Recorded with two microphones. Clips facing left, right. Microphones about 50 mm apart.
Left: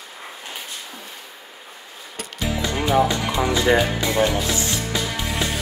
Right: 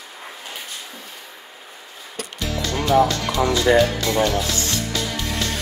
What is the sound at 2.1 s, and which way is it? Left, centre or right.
Music, centre.